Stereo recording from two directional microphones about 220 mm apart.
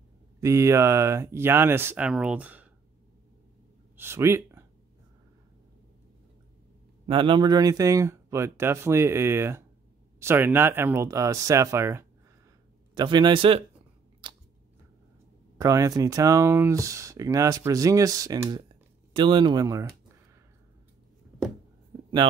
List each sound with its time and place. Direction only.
0.4 s speech: 15° right (ahead or behind)
3.9 s a sound: 10° right (ahead or behind)
7.1 s speech: 20° right (ahead or behind)
14.2 s scissors: 20° right (ahead or behind)
15.5 s speech: 15° right (ahead or behind)